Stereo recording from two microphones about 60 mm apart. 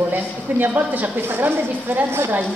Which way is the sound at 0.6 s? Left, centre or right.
Right.